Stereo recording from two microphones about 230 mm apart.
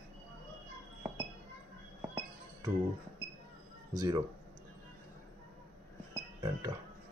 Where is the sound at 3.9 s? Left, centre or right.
Centre.